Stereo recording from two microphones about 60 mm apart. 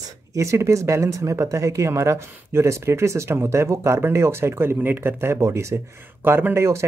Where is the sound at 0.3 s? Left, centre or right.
Right.